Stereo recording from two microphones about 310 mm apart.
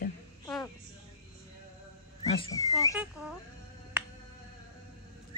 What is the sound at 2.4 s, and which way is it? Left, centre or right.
Speech, centre.